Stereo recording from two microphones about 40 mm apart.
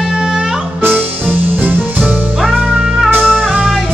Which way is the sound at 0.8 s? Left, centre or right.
Right.